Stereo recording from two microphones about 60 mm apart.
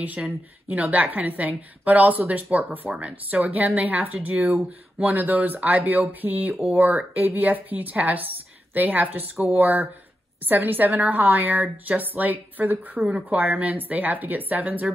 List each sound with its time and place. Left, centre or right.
0.2 s a woman's voice: centre
6.5 s speech: centre
6.8 s a woman's voice: right